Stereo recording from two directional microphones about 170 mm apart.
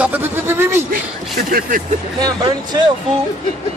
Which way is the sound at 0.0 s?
10° right (ahead or behind).